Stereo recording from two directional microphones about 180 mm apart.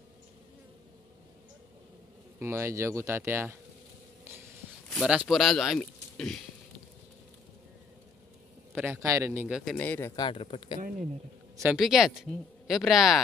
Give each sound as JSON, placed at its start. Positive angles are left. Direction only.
{"t": 2.3, "sound": "speech", "side_deg": -15}
{"t": 4.8, "sound": "speech", "side_deg": 0}
{"t": 8.7, "sound": "speech", "side_deg": -15}
{"t": 9.7, "sound": "speech", "side_deg": 10}
{"t": 10.2, "sound": "speech", "side_deg": 30}
{"t": 11.7, "sound": "speech", "side_deg": 0}